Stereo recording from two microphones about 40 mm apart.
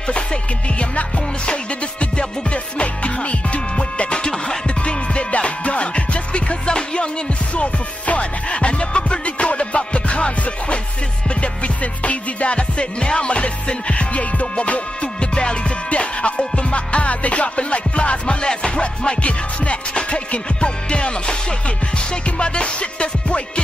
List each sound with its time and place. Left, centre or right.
0.1 s music: left
4.1 s music: centre
4.6 s music: left
7.5 s music: left
19.2 s music: left